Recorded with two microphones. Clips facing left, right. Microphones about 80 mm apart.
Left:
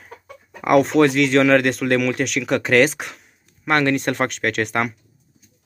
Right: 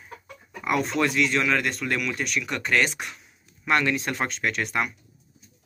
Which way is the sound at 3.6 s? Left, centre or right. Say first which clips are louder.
Left 5 dB; left.